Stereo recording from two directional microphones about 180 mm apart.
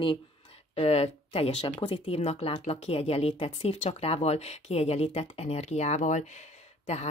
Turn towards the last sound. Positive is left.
turn(degrees=35)  # may be behind; listen again after turning